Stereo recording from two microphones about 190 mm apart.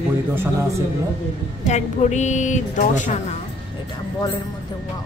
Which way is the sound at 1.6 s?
40° left (ahead or behind).